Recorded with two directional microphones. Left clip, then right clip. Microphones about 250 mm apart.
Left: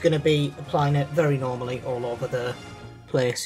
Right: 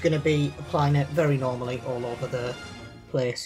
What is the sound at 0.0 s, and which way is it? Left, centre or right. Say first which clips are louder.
Speech: left 3 dB; centre.